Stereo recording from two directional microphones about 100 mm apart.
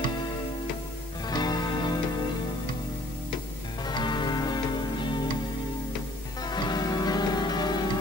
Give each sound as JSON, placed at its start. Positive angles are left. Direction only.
{"t": 1.3, "sound": "music", "side_deg": 40}
{"t": 3.8, "sound": "music", "side_deg": 45}
{"t": 6.4, "sound": "music", "side_deg": 45}